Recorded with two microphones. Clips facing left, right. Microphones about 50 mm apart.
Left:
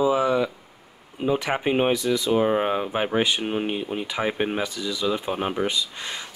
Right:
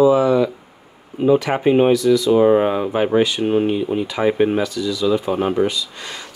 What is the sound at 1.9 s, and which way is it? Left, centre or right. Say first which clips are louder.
Speech: right 9 dB; left.